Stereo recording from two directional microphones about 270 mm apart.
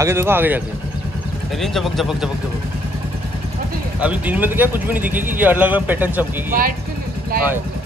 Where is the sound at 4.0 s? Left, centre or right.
Centre.